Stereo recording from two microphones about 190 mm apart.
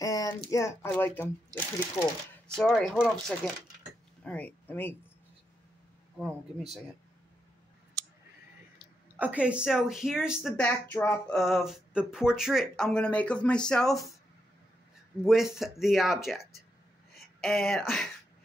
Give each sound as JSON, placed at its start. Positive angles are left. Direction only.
{"t": 0.0, "sound": "a sound", "side_deg": 20}
{"t": 0.5, "sound": "speech", "side_deg": 15}
{"t": 9.1, "sound": "speech", "side_deg": -5}
{"t": 10.6, "sound": "speech", "side_deg": 10}
{"t": 15.2, "sound": "speech", "side_deg": 0}